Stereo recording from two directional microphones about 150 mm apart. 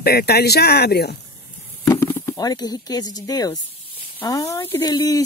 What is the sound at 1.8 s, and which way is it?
Speech, 20° left (ahead or behind).